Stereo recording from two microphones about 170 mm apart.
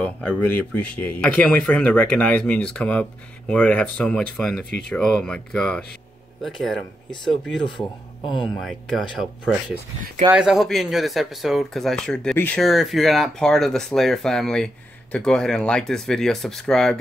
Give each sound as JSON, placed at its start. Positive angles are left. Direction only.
{"t": 0.4, "sound": "speech", "side_deg": 10}
{"t": 7.6, "sound": "speech", "side_deg": 30}
{"t": 8.6, "sound": "speech", "side_deg": 0}